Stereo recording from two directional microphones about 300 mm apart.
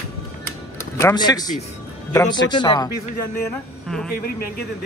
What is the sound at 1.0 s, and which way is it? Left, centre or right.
Speech, centre.